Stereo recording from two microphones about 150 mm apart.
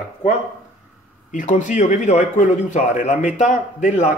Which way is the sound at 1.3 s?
55° left (ahead or behind).